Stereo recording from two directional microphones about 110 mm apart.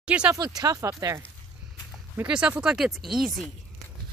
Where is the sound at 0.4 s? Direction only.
35° right (ahead or behind).